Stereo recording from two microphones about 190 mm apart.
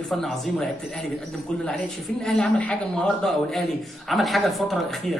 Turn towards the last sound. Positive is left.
turn(degrees=0)  # may be behind; listen again after turning